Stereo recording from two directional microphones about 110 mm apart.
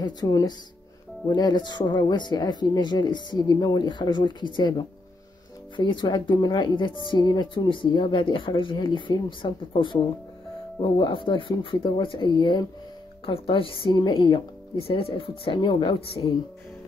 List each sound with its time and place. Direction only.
0.0 s speech: 35° left (ahead or behind)
13.2 s speech: 55° left (ahead or behind)